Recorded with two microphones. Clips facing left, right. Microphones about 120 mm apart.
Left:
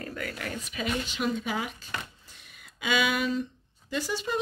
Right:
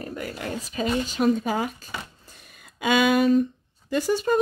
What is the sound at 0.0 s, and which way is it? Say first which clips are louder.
Speech: right 4 dB; 25° right (ahead or behind).